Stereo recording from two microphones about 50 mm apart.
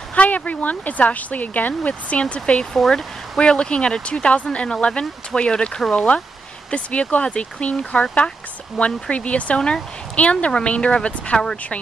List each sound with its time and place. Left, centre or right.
0.1 s speech: left
2.7 s speech: centre
8.8 s speech: centre
9.1 s speech: left